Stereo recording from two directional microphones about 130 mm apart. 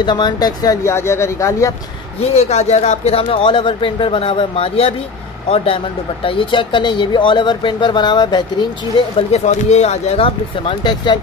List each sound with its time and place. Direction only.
0.0 s speech: 35° left (ahead or behind)
2.3 s speech: 60° left (ahead or behind)
6.2 s speech: 40° left (ahead or behind)
9.3 s speech: 60° left (ahead or behind); by 11.1 s 35° left (ahead or behind)